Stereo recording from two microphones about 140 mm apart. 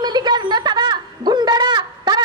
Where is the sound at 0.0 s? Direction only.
30° right (ahead or behind).